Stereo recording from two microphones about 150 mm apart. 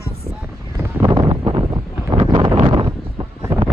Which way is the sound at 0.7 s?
25° right (ahead or behind).